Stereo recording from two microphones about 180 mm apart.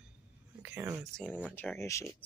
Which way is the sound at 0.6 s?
10° right (ahead or behind).